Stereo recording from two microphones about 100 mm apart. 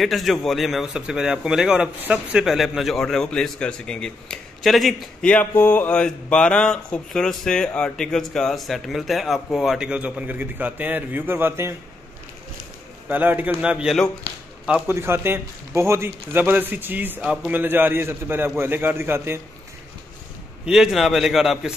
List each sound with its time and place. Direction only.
0.0 s speech: centre (ahead or behind)
5.3 s speech: 20° left (ahead or behind); by 11.7 s 25° right (ahead or behind)
13.1 s speech: 15° right (ahead or behind)
14.9 s a man's voice: 25° right (ahead or behind)
20.6 s speech: 5° right (ahead or behind)